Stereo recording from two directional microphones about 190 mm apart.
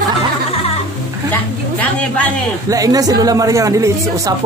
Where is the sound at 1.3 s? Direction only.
10° left (ahead or behind).